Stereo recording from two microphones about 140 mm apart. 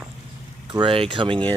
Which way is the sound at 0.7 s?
35° right (ahead or behind).